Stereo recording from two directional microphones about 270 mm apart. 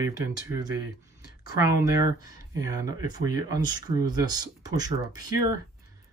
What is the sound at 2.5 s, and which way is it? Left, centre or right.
Speech, centre.